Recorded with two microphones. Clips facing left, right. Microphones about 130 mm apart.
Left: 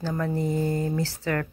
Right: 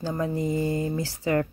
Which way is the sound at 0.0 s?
15° right (ahead or behind).